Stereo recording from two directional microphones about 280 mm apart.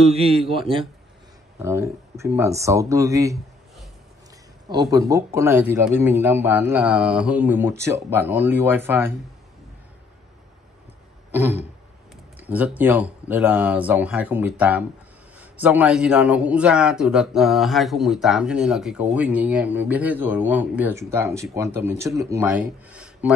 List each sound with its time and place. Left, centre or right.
0.0 s a man's voice: right
4.9 s a man's voice: centre
12.4 s a man's voice: centre